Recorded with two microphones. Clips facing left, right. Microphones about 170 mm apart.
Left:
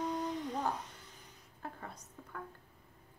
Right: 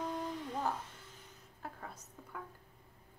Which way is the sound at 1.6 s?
5° right (ahead or behind).